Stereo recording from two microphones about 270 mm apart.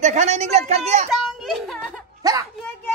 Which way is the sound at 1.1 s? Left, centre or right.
Centre.